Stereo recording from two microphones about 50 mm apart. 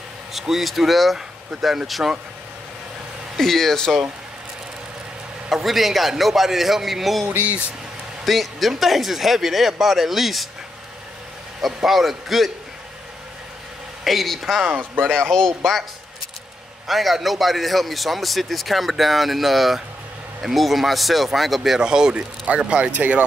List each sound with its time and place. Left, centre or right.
0.3 s a man's voice: centre
3.3 s speech: centre
5.5 s a man's voice: centre
8.3 s a man's voice: centre
11.6 s a man's voice: centre
14.0 s a man's voice: centre
14.7 s speech: right
15.3 s speech: centre
16.8 s a man's voice: centre
21.7 s speech: centre